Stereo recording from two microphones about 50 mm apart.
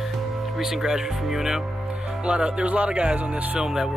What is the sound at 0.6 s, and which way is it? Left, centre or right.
Speech, centre.